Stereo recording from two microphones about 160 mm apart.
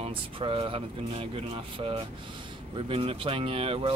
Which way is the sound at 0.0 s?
35° right (ahead or behind).